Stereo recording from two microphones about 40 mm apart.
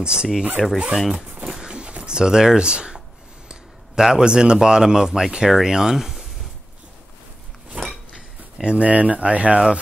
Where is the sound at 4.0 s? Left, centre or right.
Centre.